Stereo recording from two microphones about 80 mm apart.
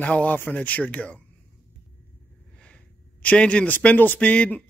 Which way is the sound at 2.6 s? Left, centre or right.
Centre.